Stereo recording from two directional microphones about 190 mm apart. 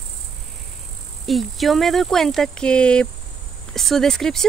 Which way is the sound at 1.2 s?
Centre (ahead or behind).